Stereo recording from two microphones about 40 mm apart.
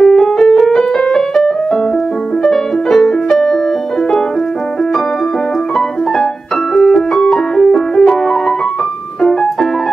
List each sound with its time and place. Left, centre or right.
0.0 s music: centre
6.7 s music: centre